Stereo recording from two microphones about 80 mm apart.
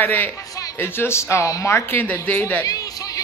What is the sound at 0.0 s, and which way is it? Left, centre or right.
Speech, left.